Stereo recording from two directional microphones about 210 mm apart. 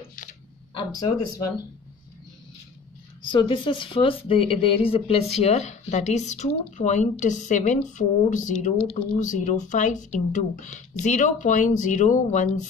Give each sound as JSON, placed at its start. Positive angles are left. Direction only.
{"t": 0.7, "sound": "speech", "side_deg": 15}
{"t": 3.3, "sound": "speech", "side_deg": 25}